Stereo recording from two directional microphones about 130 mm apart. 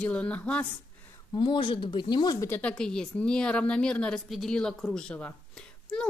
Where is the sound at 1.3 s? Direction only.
40° left (ahead or behind).